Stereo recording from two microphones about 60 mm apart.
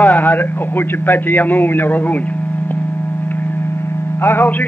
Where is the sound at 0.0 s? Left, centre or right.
Left.